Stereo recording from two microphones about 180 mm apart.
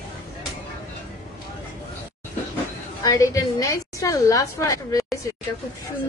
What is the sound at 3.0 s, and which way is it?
Speech, 20° left (ahead or behind).